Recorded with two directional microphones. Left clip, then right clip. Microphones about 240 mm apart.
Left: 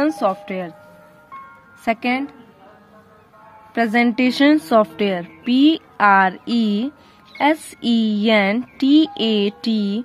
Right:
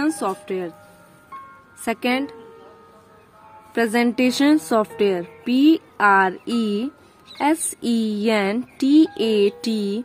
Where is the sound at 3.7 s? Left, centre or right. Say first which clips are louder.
Left 2 dB; centre.